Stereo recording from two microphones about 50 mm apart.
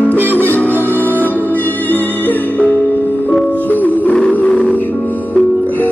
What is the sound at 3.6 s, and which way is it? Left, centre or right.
Music, left.